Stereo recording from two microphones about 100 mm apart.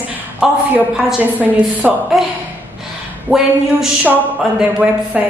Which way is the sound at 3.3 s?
10° right (ahead or behind).